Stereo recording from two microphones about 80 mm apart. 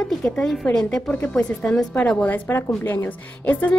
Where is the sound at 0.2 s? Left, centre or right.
Centre.